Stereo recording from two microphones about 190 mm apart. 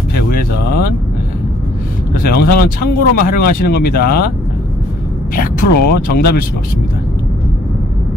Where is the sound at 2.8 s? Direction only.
50° left (ahead or behind).